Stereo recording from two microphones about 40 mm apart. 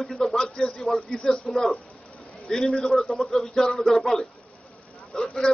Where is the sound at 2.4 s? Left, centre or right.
Centre.